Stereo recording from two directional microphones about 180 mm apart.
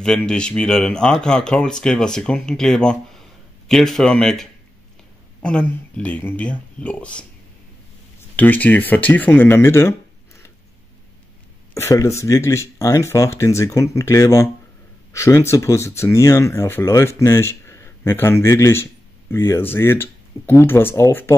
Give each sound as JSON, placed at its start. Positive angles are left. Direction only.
{"t": 0.0, "sound": "speech", "side_deg": 5}
{"t": 8.4, "sound": "speech", "side_deg": 10}
{"t": 11.7, "sound": "speech", "side_deg": 15}